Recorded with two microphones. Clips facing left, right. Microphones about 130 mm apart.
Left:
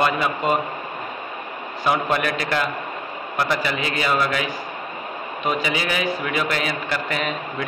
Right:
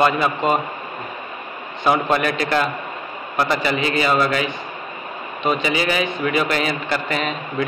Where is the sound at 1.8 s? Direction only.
Centre (ahead or behind).